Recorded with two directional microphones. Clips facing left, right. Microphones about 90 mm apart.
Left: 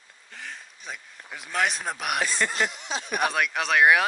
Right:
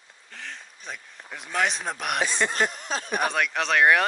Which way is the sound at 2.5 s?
40° right (ahead or behind).